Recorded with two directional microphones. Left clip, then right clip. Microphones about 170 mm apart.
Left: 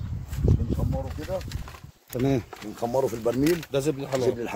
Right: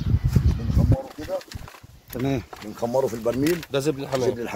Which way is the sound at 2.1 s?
90° left.